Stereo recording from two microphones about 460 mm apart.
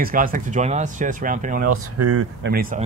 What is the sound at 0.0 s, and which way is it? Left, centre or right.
Speech, centre.